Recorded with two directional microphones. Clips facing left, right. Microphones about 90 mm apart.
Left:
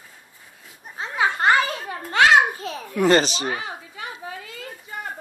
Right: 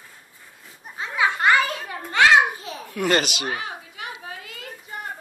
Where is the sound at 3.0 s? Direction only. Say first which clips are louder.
Left 4 dB; 30° left (ahead or behind).